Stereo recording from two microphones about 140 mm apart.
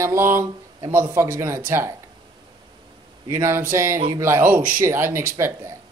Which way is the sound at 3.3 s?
20° right (ahead or behind).